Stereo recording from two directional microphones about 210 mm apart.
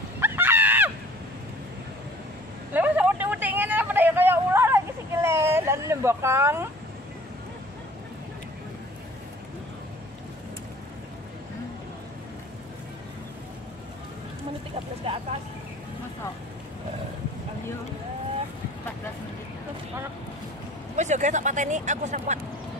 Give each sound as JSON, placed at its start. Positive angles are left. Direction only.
{"t": 0.2, "sound": "screaming", "side_deg": -10}
{"t": 2.7, "sound": "vehicle", "side_deg": -10}
{"t": 20.9, "sound": "speech", "side_deg": -35}